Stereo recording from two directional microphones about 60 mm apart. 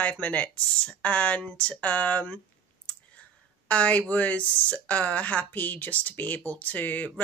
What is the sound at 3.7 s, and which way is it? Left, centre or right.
Speech, left.